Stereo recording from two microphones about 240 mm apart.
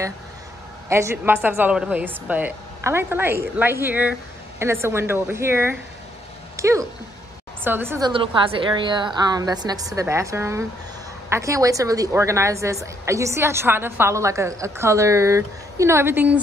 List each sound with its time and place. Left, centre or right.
0.8 s a woman's voice: centre
8.1 s a woman's voice: right